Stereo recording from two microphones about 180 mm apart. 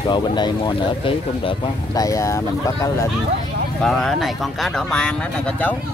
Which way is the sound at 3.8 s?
5° left (ahead or behind).